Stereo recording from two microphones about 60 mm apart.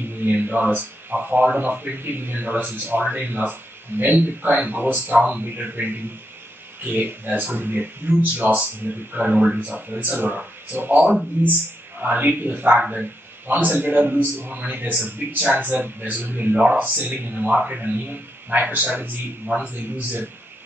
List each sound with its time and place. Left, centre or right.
0.2 s a man's voice: right
9.3 s a man's voice: centre
9.7 s a man's voice: right
17.5 s a man's voice: centre
18.0 s a man's voice: right